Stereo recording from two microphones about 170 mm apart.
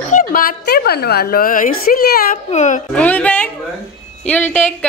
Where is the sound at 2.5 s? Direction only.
45° left (ahead or behind).